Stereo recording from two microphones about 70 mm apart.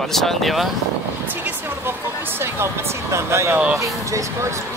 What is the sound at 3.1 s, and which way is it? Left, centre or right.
Speech, right.